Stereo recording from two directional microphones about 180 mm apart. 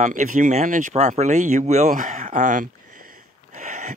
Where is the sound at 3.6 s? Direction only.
40° right (ahead or behind).